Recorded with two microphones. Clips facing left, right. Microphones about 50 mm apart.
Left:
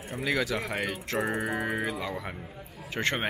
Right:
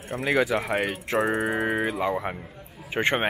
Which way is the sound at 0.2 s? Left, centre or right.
Right.